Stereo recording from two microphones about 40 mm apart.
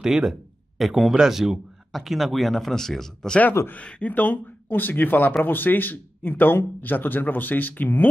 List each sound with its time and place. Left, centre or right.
0.0 s speech: centre
1.1 s speech: centre
1.9 s a man's voice: centre
4.1 s speech: left